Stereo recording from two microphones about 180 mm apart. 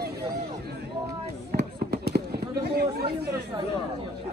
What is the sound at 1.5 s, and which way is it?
Fireworks, 65° right (ahead or behind).